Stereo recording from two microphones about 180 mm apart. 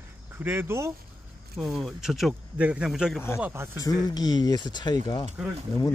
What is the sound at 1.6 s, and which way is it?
Speech, centre (ahead or behind).